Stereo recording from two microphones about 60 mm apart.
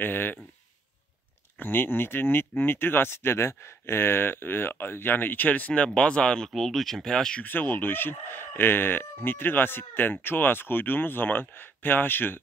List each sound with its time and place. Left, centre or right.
0.0 s speech: left
1.6 s speech: left; by 7.4 s centre
7.4 s speech: left